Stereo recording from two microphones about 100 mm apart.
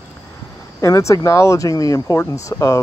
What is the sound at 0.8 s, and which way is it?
Speech, 30° left (ahead or behind).